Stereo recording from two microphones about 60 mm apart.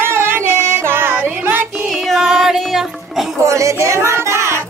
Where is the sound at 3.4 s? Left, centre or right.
Right.